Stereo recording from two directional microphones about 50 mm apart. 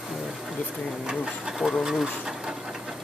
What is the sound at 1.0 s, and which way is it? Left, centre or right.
Speech, centre.